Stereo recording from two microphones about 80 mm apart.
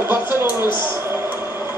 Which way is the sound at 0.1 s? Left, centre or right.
Right.